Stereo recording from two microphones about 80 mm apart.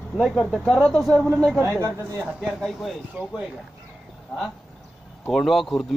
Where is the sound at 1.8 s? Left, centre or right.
Right.